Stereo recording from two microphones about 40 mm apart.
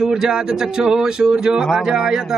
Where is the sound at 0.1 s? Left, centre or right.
Centre.